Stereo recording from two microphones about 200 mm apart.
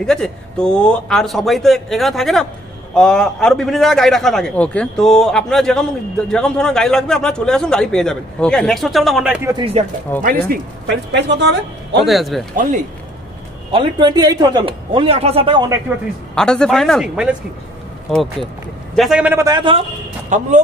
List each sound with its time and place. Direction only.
0.0 s a man's voice: centre (ahead or behind)
10.2 s a man's voice: 55° right (ahead or behind)
12.1 s a man's voice: centre (ahead or behind)
13.7 s a man's voice: 25° right (ahead or behind)
16.3 s a man's voice: 5° left (ahead or behind); by 19.8 s 25° right (ahead or behind)
20.3 s speech: 35° right (ahead or behind)